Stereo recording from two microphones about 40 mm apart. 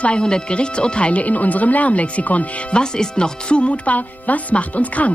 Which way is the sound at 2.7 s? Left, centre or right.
Centre.